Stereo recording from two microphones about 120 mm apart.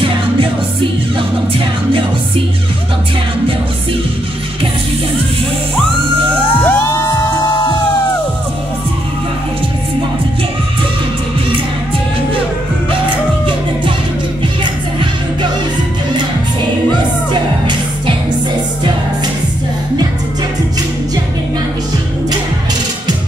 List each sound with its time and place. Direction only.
0.0 s music: 45° right (ahead or behind)
6.6 s music: 20° left (ahead or behind)
17.3 s music: 40° right (ahead or behind)